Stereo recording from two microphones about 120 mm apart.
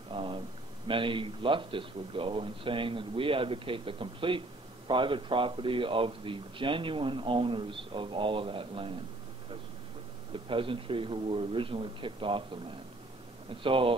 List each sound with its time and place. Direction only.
0.1 s a sound: 45° right (ahead or behind)
0.8 s a man's voice: 45° right (ahead or behind)
10.3 s a man's voice: 45° right (ahead or behind)
13.6 s a man's voice: 45° right (ahead or behind)